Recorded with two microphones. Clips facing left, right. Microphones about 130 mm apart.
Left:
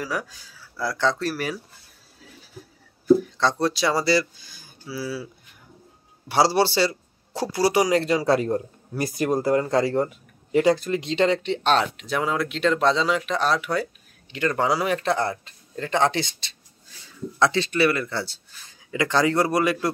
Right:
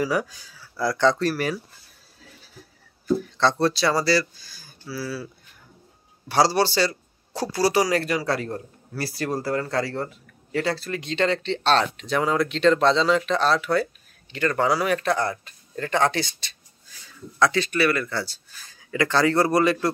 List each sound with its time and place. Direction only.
0.0 s speech: centre (ahead or behind)
3.3 s speech: 10° left (ahead or behind)
6.2 s a man's voice: 25° left (ahead or behind)